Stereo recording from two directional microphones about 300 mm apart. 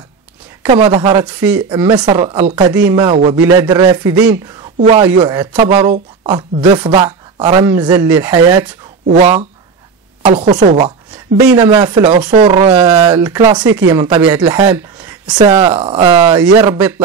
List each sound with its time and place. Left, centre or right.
0.7 s speech: centre
9.0 s speech: right
11.4 s speech: centre